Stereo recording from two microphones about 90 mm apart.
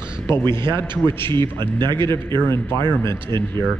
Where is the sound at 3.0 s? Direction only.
30° left (ahead or behind).